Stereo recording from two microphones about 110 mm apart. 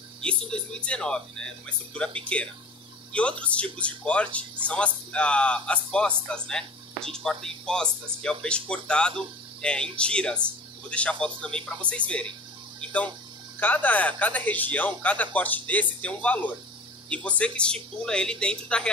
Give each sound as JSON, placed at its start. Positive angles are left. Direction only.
{"t": 0.2, "sound": "speech", "side_deg": 10}